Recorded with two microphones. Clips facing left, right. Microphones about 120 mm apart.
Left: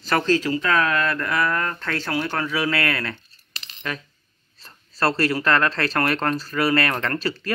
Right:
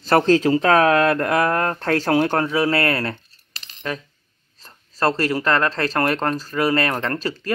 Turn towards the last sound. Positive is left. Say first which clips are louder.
# right 1 dB
turn(degrees=-20)  # may be behind; listen again after turning